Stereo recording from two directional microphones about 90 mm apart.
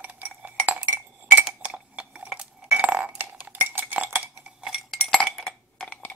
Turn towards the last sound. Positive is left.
turn(degrees=10)  # may be behind; listen again after turning